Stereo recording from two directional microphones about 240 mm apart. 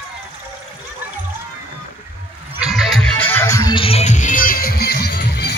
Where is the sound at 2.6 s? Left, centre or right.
Centre; by 5.5 s left.